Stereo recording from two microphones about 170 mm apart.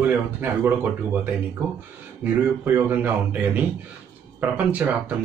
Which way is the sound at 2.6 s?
10° right (ahead or behind).